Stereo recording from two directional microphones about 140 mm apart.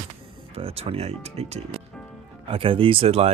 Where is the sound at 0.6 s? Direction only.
45° right (ahead or behind).